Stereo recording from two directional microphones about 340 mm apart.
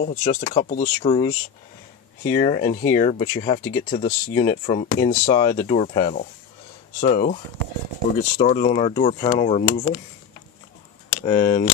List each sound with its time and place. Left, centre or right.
0.0 s speech: left
11.2 s speech: centre